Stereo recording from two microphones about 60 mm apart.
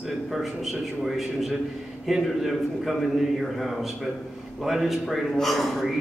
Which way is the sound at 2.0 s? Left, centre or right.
Centre.